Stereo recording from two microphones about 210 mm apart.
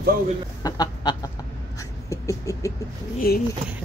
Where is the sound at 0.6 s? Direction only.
20° left (ahead or behind).